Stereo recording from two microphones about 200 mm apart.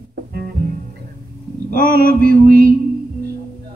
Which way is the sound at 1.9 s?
50° right (ahead or behind).